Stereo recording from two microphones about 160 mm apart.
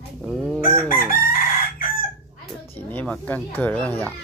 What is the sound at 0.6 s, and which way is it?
Chicken, 60° left (ahead or behind).